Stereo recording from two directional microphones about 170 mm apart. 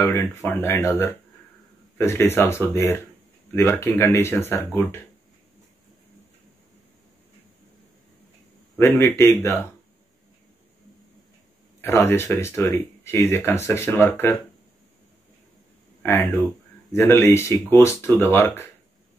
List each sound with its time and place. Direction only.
0.0 s speech: 15° left (ahead or behind)
8.7 s a man's voice: 15° left (ahead or behind)
11.8 s speech: 15° left (ahead or behind)
16.0 s speech: 15° left (ahead or behind)